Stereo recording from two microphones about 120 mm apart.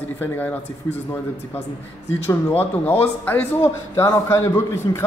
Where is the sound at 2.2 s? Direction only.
15° left (ahead or behind).